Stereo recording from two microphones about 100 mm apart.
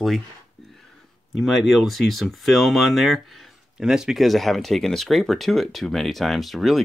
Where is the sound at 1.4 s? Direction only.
Centre (ahead or behind).